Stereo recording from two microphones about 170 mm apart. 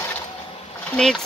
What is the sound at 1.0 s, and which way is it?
Speech, 5° left (ahead or behind).